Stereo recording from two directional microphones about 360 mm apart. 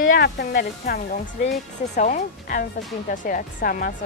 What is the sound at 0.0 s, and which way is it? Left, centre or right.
Speech, left.